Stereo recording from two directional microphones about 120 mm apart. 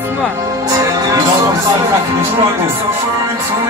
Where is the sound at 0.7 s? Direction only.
30° right (ahead or behind).